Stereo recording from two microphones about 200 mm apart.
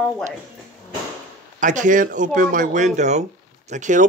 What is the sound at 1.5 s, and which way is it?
Speech, 40° right (ahead or behind).